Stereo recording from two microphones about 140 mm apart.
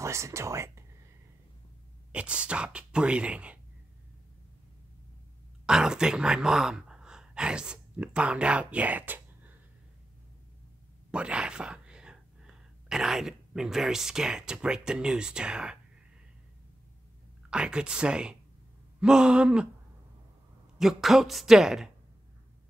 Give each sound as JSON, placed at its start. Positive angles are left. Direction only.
{"t": 0.0, "sound": "speech", "side_deg": -20}
{"t": 2.1, "sound": "speech", "side_deg": -10}
{"t": 5.7, "sound": "speech", "side_deg": -5}
{"t": 11.1, "sound": "speech", "side_deg": -5}
{"t": 17.5, "sound": "a woman's voice", "side_deg": -5}
{"t": 20.7, "sound": "a woman's voice", "side_deg": 0}